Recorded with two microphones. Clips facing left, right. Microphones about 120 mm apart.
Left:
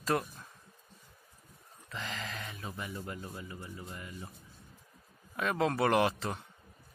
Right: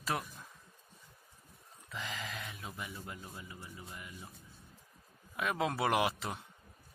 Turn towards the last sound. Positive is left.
turn(degrees=-5)  # may be behind; listen again after turning